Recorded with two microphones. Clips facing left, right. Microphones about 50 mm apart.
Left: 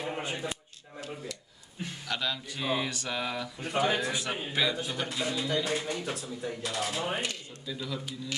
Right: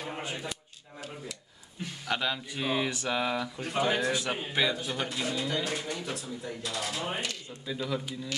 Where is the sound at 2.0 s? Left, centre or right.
Centre.